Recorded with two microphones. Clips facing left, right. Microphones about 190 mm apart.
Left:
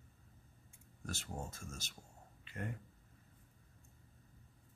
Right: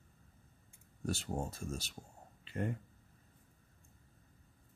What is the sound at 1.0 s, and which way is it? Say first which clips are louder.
Speech: right 7 dB; 35° right (ahead or behind).